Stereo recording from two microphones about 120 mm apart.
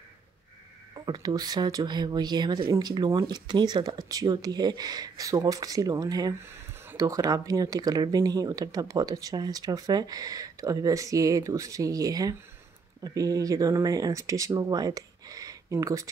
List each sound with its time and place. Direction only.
0.9 s speech: 35° right (ahead or behind)
6.4 s speech: 20° right (ahead or behind)